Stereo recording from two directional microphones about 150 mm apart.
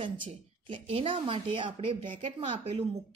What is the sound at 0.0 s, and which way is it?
Speech, 35° right (ahead or behind).